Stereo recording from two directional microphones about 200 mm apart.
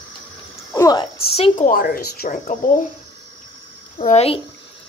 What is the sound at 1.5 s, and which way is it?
Speech, 40° left (ahead or behind).